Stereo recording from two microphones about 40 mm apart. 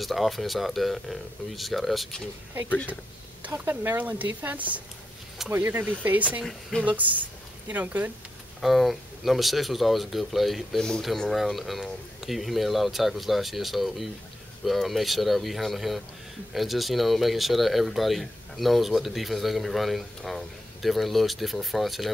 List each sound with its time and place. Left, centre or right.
0.0 s speech: centre
3.5 s speech: right
5.5 s speech: right
8.5 s speech: centre